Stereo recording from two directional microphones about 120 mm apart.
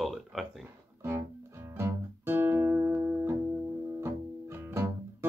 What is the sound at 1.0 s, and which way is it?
Guitar, 20° right (ahead or behind).